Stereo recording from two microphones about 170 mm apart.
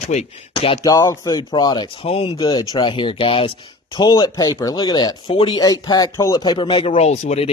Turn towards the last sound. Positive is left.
turn(degrees=40)  # may be behind; listen again after turning